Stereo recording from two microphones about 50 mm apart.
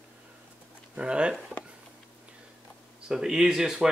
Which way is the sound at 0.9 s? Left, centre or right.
Centre.